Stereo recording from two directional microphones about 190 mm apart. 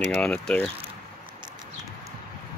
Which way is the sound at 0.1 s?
5° left (ahead or behind).